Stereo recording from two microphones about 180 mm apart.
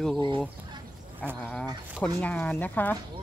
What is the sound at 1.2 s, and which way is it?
Speech, 5° left (ahead or behind).